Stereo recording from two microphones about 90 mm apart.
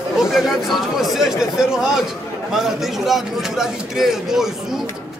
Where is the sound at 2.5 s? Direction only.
5° right (ahead or behind).